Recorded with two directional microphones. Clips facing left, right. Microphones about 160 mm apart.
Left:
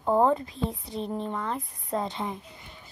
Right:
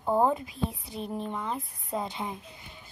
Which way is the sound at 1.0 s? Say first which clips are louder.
Left 2 dB; 30° left (ahead or behind).